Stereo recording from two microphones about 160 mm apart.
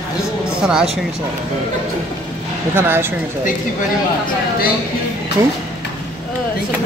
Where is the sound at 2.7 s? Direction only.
15° right (ahead or behind).